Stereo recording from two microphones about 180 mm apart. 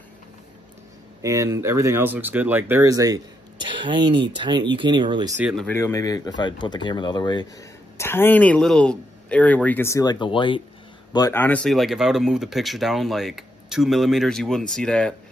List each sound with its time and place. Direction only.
1.2 s speech: 15° right (ahead or behind)
5.4 s speech: centre (ahead or behind)
5.7 s speech: 15° left (ahead or behind)
8.0 s speech: 10° left (ahead or behind); by 10.6 s 25° left (ahead or behind)
11.1 s speech: 15° left (ahead or behind)